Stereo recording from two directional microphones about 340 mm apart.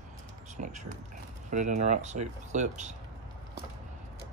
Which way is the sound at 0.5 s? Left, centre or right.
Right.